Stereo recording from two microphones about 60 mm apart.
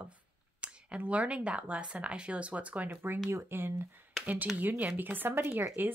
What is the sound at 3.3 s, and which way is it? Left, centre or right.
Speech, right.